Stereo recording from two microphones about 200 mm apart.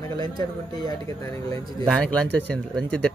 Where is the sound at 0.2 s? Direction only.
20° left (ahead or behind).